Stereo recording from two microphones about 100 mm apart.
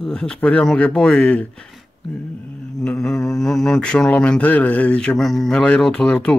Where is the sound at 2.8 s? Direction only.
10° left (ahead or behind).